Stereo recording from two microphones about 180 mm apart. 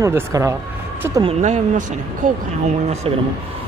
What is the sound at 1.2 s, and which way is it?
Speech, 35° right (ahead or behind).